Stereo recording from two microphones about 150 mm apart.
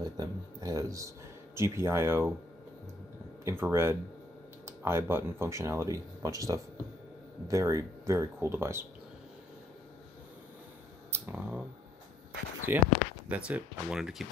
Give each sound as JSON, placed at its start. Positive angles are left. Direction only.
{"t": 0.0, "sound": "a sound", "side_deg": -25}
{"t": 3.4, "sound": "speech", "side_deg": -15}
{"t": 11.1, "sound": "speech", "side_deg": -15}
{"t": 12.7, "sound": "speech", "side_deg": -10}